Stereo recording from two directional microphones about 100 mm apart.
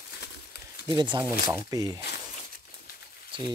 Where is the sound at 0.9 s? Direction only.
50° right (ahead or behind).